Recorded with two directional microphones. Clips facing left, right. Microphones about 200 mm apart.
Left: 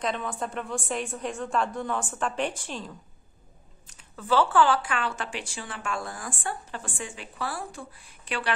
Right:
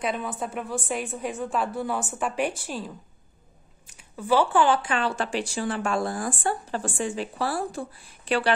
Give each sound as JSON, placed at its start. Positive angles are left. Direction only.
{"t": 0.0, "sound": "a woman's voice", "side_deg": -5}
{"t": 3.9, "sound": "speech", "side_deg": -10}